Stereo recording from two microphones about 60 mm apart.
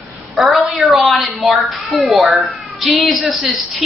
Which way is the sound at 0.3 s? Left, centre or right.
Centre.